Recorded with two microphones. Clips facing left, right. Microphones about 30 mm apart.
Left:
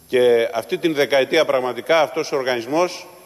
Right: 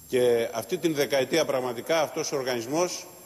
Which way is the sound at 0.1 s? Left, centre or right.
Left.